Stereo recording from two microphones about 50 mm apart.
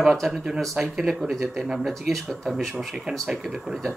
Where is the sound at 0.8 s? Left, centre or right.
Right.